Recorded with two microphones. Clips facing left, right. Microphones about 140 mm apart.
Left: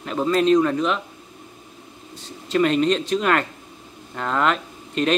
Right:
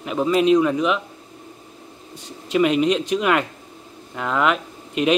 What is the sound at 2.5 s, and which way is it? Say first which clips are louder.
A man's voice: right 1 dB; 10° right (ahead or behind).